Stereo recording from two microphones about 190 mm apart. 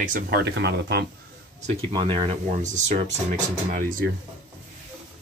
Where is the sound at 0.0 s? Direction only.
50° right (ahead or behind).